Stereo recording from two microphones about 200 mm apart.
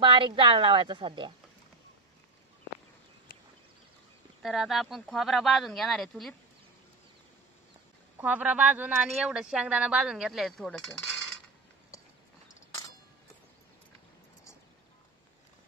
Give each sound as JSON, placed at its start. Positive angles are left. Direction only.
{"t": 0.0, "sound": "a woman's voice", "side_deg": -25}
{"t": 4.4, "sound": "speech", "side_deg": 0}
{"t": 8.2, "sound": "speech", "side_deg": -5}